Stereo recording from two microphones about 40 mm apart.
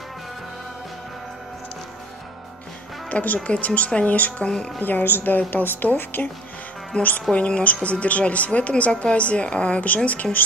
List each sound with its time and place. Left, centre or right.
3.1 s a woman's voice: left
4.4 s a woman's voice: left
4.8 s a woman's voice: left
7.0 s a woman's voice: left
7.3 s a woman's voice: left
10.2 s speech: centre